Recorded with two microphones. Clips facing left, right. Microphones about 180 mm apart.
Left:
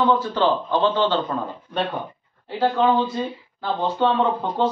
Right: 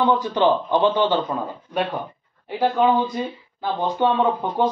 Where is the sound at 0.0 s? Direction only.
15° right (ahead or behind).